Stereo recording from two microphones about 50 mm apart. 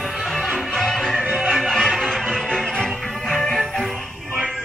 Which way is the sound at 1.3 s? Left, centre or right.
Centre.